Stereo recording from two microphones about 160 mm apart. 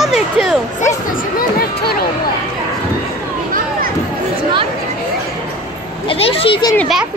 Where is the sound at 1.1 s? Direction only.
60° left (ahead or behind).